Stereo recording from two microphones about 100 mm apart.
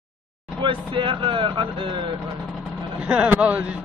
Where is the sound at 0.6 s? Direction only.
60° right (ahead or behind).